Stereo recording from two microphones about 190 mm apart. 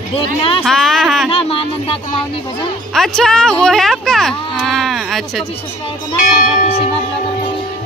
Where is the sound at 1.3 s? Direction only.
30° left (ahead or behind).